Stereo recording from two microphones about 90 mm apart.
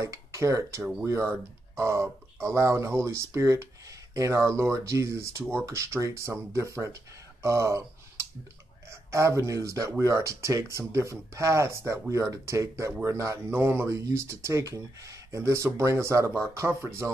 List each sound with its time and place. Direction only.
0.0 s speech: 35° right (ahead or behind)
7.4 s a sound: 35° right (ahead or behind)
8.9 s speech: 35° right (ahead or behind)